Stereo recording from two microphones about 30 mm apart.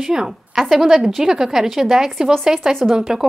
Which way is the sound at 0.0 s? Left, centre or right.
Centre.